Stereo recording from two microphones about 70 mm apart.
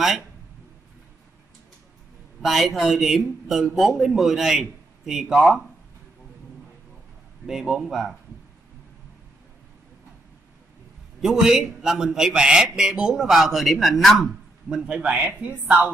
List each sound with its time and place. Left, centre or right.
2.4 s a man's voice: centre
7.4 s a man's voice: centre
11.1 s a man's voice: centre
14.7 s a man's voice: centre